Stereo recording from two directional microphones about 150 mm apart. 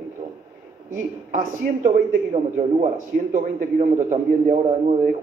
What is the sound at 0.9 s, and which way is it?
A man's voice, 60° right (ahead or behind).